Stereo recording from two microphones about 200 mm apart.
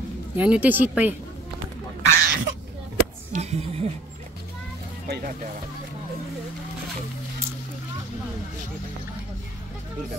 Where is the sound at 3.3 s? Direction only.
35° right (ahead or behind).